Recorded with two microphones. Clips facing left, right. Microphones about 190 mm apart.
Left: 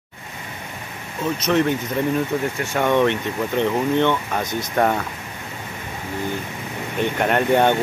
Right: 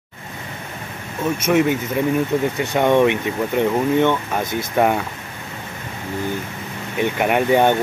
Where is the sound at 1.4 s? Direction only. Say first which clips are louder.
Right 2 dB; 10° right (ahead or behind).